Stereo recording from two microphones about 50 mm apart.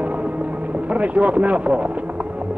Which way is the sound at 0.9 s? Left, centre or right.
Right.